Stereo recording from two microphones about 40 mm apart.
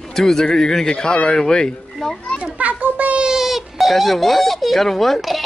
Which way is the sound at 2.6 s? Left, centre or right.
Right.